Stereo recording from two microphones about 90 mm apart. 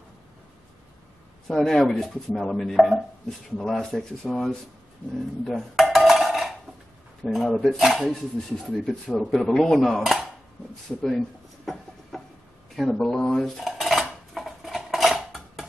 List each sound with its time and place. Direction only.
1.5 s speech: 5° left (ahead or behind)
5.4 s dishes: centre (ahead or behind)
7.2 s speech: 5° right (ahead or behind)
11.0 s a sound: centre (ahead or behind)
12.9 s cutlery: 5° left (ahead or behind)